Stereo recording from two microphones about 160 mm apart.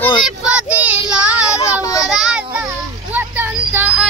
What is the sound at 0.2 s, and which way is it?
Child singing, 5° right (ahead or behind).